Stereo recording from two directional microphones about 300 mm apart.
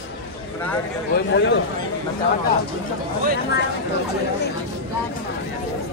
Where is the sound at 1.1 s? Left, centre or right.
Left.